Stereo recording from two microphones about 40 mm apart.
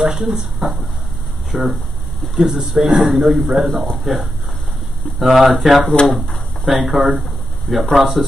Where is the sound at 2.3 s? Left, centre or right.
Centre.